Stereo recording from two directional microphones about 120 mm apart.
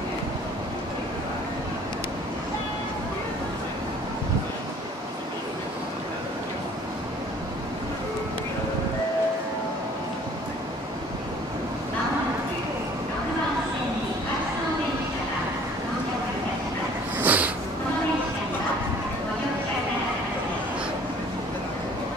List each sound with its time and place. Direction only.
17.2 s snort: 15° right (ahead or behind)